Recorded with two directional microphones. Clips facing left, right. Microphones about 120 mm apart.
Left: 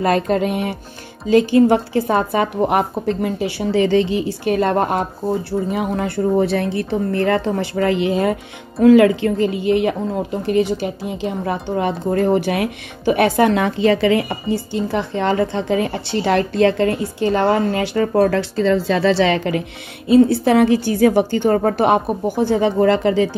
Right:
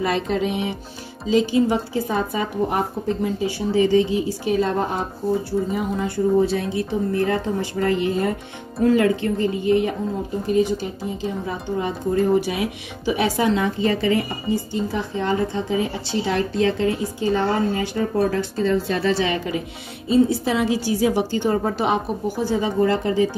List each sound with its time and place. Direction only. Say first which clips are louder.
0.0 s music: left 5 dB; 50° left (ahead or behind)
1.3 s a woman's voice: left 6 dB; 60° left (ahead or behind); by 9.9 s 90° left
10.4 s a woman's voice: left 2 dB; 75° left (ahead or behind)
20.1 s a woman's voice: left 6 dB; 60° left (ahead or behind); by 23.2 s 90° left